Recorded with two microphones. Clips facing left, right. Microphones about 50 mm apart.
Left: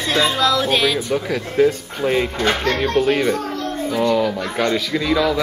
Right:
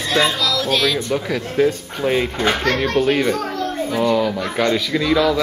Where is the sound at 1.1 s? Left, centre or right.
Centre.